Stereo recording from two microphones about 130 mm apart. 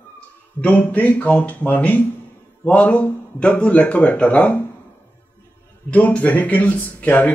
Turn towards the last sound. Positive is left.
turn(degrees=15)  # may be behind; listen again after turning